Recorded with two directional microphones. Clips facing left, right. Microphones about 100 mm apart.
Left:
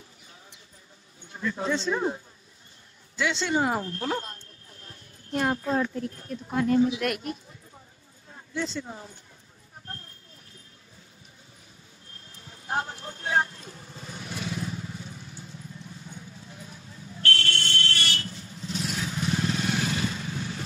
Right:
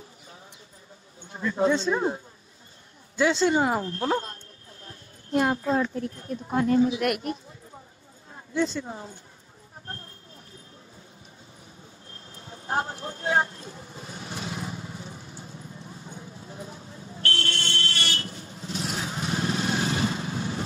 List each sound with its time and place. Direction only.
1.3 s speech: 30° right (ahead or behind)
3.2 s speech: 40° right (ahead or behind)
8.6 s speech: 50° right (ahead or behind)
12.4 s speech: 35° right (ahead or behind)
16.2 s buzzer: 30° right (ahead or behind)